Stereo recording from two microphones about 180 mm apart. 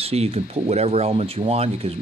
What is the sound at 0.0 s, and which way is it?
Speech, 35° right (ahead or behind).